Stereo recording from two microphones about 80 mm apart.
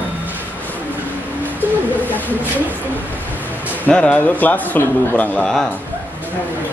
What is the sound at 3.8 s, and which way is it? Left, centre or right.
A man's voice, centre.